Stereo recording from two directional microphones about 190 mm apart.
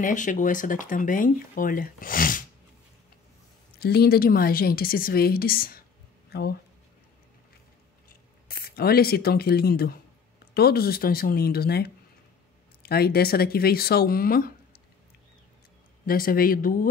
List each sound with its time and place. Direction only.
0.0 s speech: 40° left (ahead or behind)
3.8 s speech: 55° left (ahead or behind)
8.5 s speech: 50° left (ahead or behind)
16.1 s speech: 50° left (ahead or behind)